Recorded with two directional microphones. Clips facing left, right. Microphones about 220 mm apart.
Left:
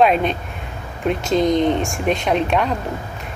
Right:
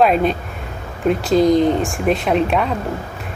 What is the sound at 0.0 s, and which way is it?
A woman's voice, centre (ahead or behind).